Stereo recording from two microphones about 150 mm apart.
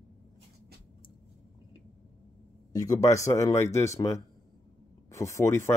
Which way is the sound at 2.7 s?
25° left (ahead or behind).